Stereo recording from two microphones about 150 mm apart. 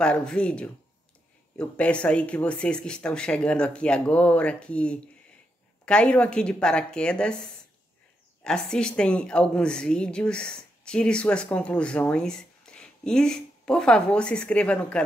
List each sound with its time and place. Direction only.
0.0 s a woman's voice: 5° left (ahead or behind)
8.5 s a woman's voice: 5° left (ahead or behind)